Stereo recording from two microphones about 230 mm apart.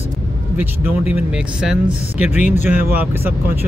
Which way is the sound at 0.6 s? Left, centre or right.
Centre.